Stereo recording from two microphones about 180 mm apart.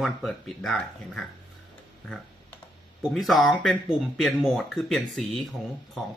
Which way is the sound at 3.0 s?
Centre (ahead or behind).